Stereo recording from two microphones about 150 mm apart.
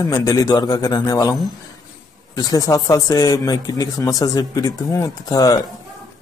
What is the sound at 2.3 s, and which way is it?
Speech, 25° left (ahead or behind).